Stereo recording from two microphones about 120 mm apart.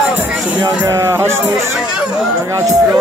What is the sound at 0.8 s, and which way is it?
Speech, 20° right (ahead or behind).